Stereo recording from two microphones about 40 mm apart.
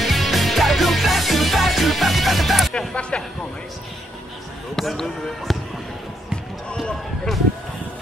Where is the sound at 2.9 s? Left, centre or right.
Left.